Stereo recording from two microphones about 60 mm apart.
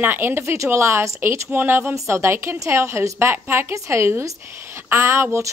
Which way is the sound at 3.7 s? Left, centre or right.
Right.